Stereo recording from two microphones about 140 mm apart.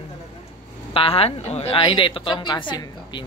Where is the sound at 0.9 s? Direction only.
45° left (ahead or behind).